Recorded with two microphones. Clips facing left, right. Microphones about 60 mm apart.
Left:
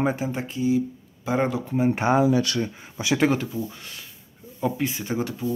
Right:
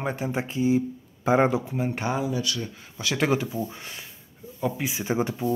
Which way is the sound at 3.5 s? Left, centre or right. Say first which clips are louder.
Even; right.